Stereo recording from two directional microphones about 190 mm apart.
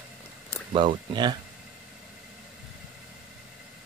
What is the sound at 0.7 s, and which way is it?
Speech, 25° right (ahead or behind).